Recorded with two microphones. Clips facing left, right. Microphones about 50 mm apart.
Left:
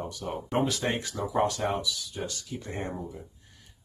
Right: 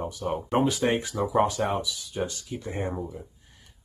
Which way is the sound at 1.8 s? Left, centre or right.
Right.